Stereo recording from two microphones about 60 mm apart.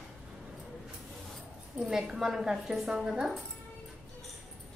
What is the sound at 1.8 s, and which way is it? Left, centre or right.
A woman's voice, centre.